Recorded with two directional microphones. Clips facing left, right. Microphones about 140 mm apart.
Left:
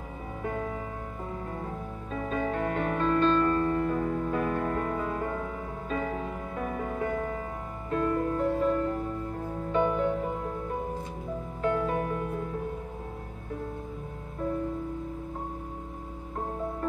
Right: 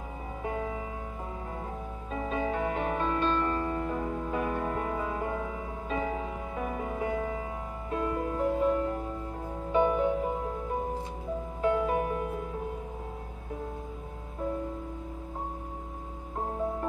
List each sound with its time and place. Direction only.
0.4 s music: 15° right (ahead or behind)
2.2 s music: 45° left (ahead or behind)
2.6 s music: 15° right (ahead or behind)
11.6 s music: 15° right (ahead or behind)